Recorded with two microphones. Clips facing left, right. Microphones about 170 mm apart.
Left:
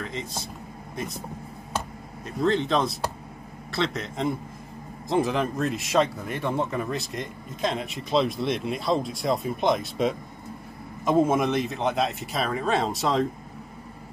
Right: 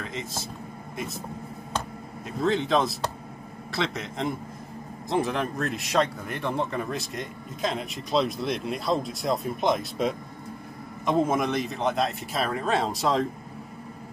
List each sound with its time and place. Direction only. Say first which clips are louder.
0.0 s speech: left 1 dB; centre (ahead or behind)
2.2 s speech: left 1 dB; centre (ahead or behind)